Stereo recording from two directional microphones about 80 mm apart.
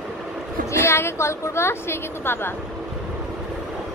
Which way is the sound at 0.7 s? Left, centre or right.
Left.